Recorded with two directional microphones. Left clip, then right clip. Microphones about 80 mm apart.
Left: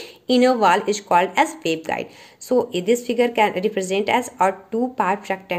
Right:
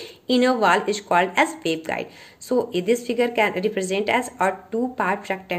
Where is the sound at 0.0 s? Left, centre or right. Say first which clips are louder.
Left 3 dB; left.